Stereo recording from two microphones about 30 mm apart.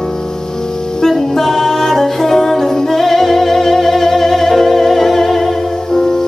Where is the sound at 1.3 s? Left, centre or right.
Centre.